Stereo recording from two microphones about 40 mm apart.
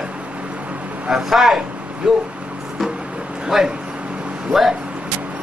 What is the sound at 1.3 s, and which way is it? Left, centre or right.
Speech, centre.